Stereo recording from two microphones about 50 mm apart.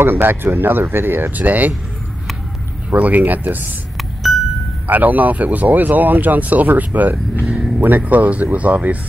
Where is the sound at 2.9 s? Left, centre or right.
Right.